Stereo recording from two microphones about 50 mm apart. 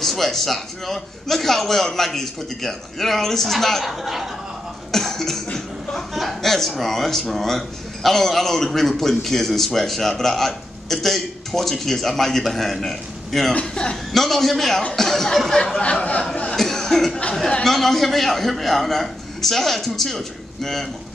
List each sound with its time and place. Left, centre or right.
0.0 s speech: centre
4.9 s cough: centre
6.1 s speech: centre
13.5 s speech: centre
14.1 s speech: centre
15.8 s a sound: left
16.5 s cough: centre
17.6 s speech: centre